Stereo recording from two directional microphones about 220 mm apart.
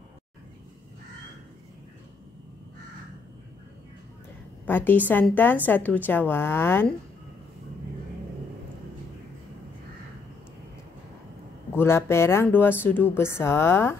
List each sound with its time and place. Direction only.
4.6 s a woman's voice: 10° left (ahead or behind)
11.7 s a woman's voice: 10° left (ahead or behind)